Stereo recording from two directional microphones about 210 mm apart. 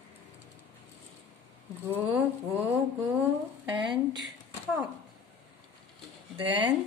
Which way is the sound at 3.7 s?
20° right (ahead or behind).